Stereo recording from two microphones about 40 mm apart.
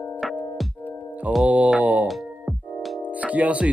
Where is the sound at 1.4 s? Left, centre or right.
Right.